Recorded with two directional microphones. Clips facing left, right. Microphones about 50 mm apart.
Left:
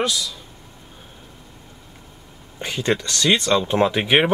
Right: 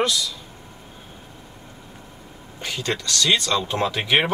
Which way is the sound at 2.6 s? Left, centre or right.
Left.